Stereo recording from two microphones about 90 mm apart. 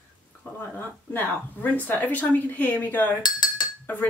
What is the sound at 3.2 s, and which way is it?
Chink, 55° left (ahead or behind).